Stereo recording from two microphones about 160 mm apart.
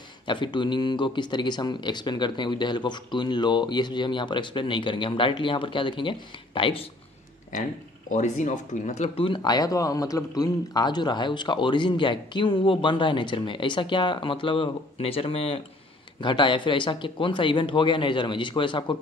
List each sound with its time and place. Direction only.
0.3 s speech: 30° left (ahead or behind)
8.1 s speech: 50° left (ahead or behind); by 18.9 s 30° left (ahead or behind)